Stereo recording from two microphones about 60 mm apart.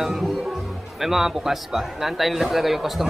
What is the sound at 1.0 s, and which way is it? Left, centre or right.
A man's voice, centre.